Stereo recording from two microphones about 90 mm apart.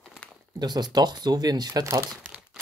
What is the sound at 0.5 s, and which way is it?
Speech, 50° right (ahead or behind).